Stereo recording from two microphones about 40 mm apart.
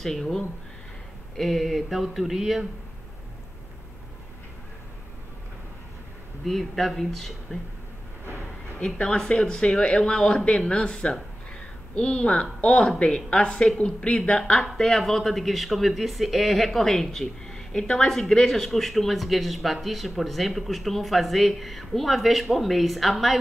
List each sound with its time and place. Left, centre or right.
0.0 s speech: centre
6.4 s speech: centre
8.9 s speech: centre
14.8 s speech: centre